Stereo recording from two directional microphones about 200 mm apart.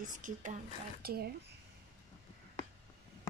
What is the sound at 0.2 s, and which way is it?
Speech, 40° right (ahead or behind).